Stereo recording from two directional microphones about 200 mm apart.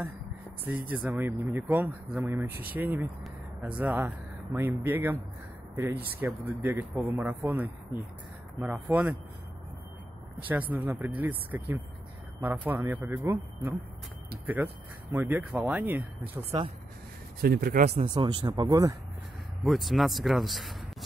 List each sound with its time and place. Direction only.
0.7 s speech: 10° right (ahead or behind)
6.2 s speech: 10° right (ahead or behind)
10.5 s speech: 10° right (ahead or behind)
17.4 s speech: 50° right (ahead or behind)
17.8 s speech: 25° right (ahead or behind)
19.6 s speech: centre (ahead or behind)